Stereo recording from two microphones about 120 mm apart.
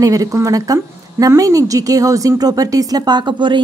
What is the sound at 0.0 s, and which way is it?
A woman's voice, 30° right (ahead or behind).